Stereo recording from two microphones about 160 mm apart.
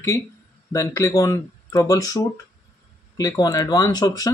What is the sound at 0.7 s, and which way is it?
Speech, 20° left (ahead or behind).